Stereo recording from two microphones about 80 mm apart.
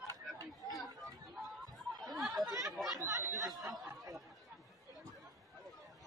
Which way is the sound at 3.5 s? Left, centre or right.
Right.